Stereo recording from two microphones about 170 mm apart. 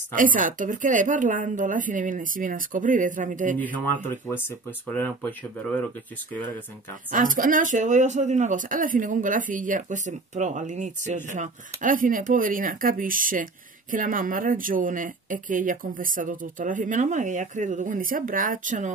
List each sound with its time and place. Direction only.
0.1 s speech: 50° right (ahead or behind)
3.5 s speech: 10° left (ahead or behind)
7.1 s speech: 55° right (ahead or behind)